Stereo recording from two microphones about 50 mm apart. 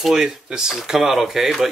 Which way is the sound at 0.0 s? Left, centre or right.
Centre.